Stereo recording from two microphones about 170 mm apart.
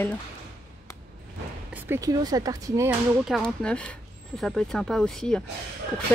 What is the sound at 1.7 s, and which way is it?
Speech, 10° right (ahead or behind).